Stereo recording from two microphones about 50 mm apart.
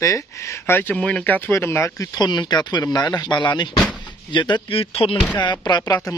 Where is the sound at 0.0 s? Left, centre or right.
Left.